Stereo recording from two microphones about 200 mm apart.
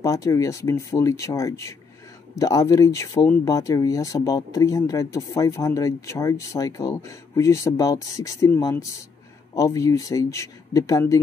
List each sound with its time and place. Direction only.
0.0 s speech: 15° left (ahead or behind)